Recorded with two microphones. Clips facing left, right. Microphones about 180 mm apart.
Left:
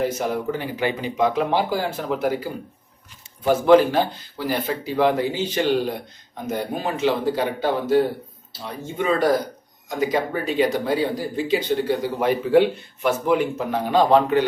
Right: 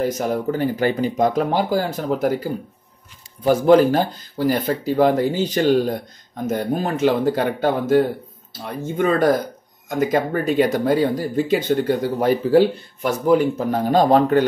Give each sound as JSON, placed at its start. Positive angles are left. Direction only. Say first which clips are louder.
{"t": 0.0, "sound": "speech", "louder": "right 2 dB", "side_deg": -40}